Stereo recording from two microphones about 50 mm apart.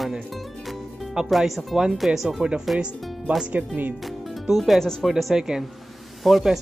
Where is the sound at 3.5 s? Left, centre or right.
Right.